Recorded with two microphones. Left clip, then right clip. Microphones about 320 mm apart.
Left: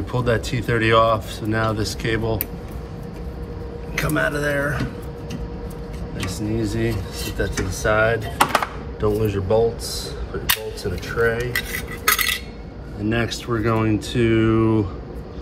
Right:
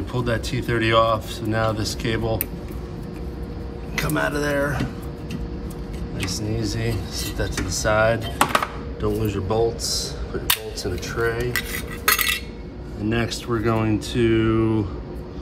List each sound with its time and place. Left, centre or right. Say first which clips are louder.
0.1 s speech: left 4 dB; centre
3.9 s speech: left 2 dB; centre
7.3 s speech: left 3 dB; centre
10.5 s cutlery: left 1 dB; centre
13.1 s speech: left 1 dB; centre